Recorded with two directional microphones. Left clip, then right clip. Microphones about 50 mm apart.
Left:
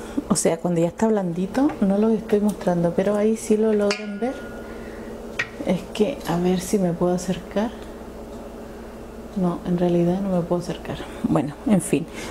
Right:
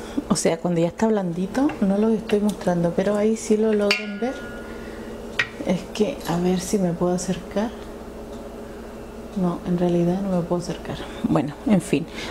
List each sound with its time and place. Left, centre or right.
0.5 s a woman's voice: left
3.7 s speech: centre
4.2 s a woman's voice: left
5.7 s a woman's voice: left
9.4 s a woman's voice: left
11.2 s speech: centre